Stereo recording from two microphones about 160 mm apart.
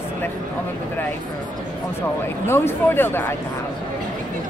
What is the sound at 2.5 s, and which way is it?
Speech, 15° left (ahead or behind).